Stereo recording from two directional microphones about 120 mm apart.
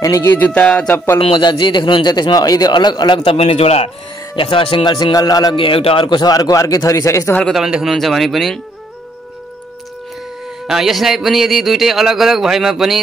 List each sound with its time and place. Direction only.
0.0 s speech: 25° left (ahead or behind)
0.5 s speech: 10° left (ahead or behind)
1.2 s a man's voice: 45° left (ahead or behind)
3.3 s a man's voice: 55° left (ahead or behind)
4.4 s speech: 45° left (ahead or behind)
4.9 s a man's voice: 35° left (ahead or behind)
5.6 s a man's voice: 50° left (ahead or behind); by 7.3 s 25° left (ahead or behind)
7.5 s speech: 5° right (ahead or behind)
10.7 s speech: centre (ahead or behind)